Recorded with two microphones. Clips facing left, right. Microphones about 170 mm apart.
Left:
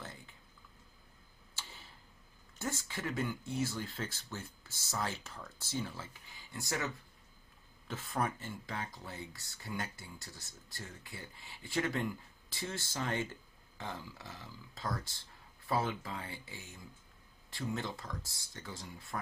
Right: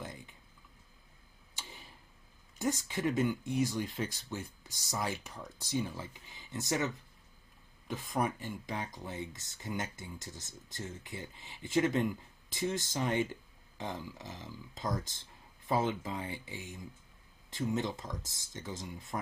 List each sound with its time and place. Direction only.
0.0 s a sound: 15° right (ahead or behind)
1.5 s tick-tock: 15° right (ahead or behind)
2.6 s speech: 15° right (ahead or behind)
7.9 s speech: 15° right (ahead or behind)